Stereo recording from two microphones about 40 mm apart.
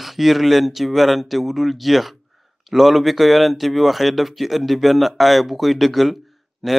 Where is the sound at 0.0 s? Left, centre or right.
Centre.